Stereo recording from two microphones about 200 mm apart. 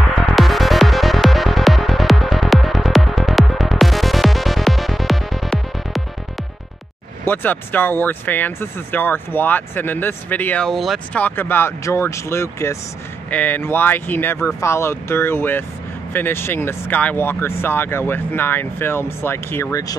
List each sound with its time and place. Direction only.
0.2 s music: centre (ahead or behind)
7.2 s speech: 10° left (ahead or behind)